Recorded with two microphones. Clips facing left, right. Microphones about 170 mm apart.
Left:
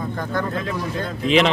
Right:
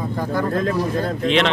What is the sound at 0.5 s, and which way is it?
Speech, 45° right (ahead or behind).